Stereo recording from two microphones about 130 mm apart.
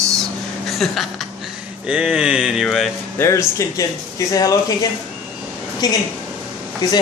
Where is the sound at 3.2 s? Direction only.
20° left (ahead or behind).